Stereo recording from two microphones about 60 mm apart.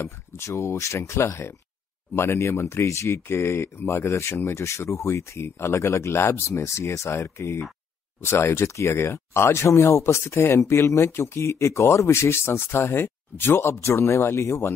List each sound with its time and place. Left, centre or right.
0.4 s speech: left
8.2 s speech: left